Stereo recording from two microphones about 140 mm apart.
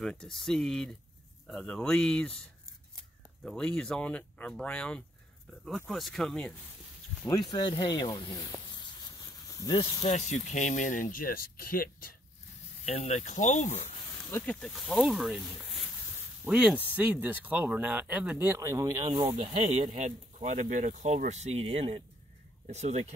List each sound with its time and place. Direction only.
0.0 s speech: 5° left (ahead or behind)
3.4 s speech: 5° left (ahead or behind)
7.5 s speech: 30° left (ahead or behind)
8.7 s a sound: 30° left (ahead or behind)
10.5 s speech: 65° left (ahead or behind); by 12.2 s 90° left
12.8 s speech: 50° left (ahead or behind)
14.4 s speech: 5° left (ahead or behind); by 19.2 s 30° right (ahead or behind)
19.4 s speech: 50° right (ahead or behind)